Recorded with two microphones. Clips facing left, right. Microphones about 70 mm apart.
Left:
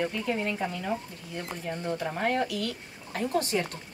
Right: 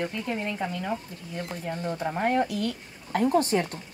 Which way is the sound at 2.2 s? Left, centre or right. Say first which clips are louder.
Right 4 dB; right.